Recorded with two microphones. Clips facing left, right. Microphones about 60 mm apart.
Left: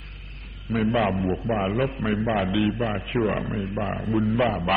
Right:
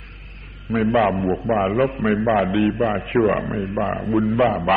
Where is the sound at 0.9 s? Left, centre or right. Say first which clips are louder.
Right 7 dB; centre.